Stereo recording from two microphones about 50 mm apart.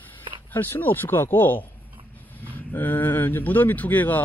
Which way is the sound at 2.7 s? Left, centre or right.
Left.